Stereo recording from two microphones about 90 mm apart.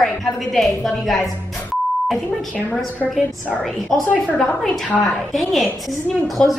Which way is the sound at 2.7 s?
15° left (ahead or behind).